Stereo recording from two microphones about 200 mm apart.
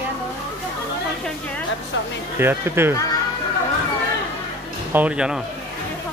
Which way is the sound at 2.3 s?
10° right (ahead or behind).